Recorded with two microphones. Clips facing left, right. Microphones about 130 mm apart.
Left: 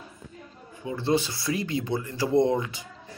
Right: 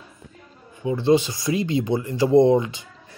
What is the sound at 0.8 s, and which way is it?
Speech, 15° right (ahead or behind).